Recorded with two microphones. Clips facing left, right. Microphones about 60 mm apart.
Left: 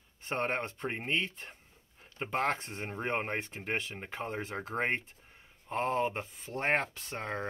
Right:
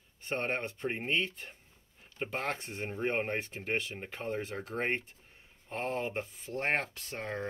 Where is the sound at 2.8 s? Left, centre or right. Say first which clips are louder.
Right 1 dB; left.